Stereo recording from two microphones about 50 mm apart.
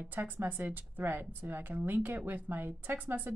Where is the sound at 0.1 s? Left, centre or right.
Right.